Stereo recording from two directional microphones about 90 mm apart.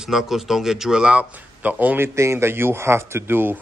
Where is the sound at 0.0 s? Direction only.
5° right (ahead or behind).